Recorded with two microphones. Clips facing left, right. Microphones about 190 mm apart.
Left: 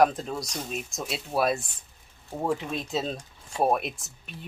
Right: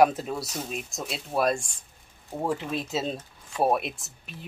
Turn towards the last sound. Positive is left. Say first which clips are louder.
# even
turn(degrees=0)  # may be behind; listen again after turning